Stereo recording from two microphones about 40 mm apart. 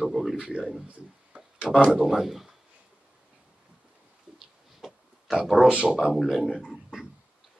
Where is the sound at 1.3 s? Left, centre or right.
Right.